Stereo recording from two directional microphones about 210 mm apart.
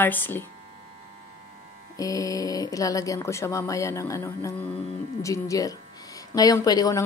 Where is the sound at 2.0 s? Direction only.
15° left (ahead or behind).